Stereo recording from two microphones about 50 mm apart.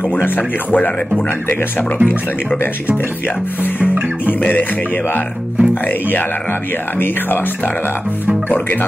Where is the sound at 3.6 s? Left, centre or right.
Left.